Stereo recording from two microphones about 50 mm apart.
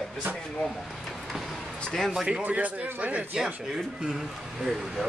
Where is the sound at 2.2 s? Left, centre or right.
Centre.